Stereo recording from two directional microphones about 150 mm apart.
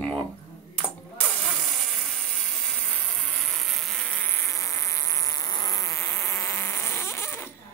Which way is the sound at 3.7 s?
Centre (ahead or behind).